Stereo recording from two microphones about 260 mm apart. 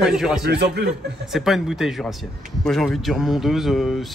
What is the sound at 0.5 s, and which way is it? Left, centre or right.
Speech, right.